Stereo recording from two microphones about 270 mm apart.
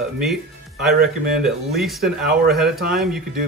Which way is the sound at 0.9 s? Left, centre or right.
Right.